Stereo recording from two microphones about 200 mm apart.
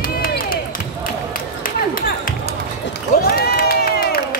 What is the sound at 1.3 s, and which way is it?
Music, 45° left (ahead or behind).